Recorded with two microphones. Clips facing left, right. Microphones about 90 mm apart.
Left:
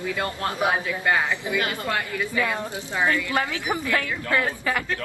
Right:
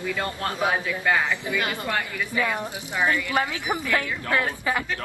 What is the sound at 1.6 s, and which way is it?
A woman's voice, 20° right (ahead or behind).